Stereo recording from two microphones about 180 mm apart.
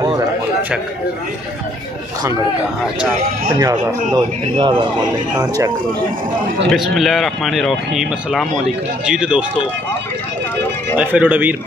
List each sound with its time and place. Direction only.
4.1 s speech: 25° right (ahead or behind)
6.7 s speech: centre (ahead or behind)
11.0 s speech: 10° right (ahead or behind)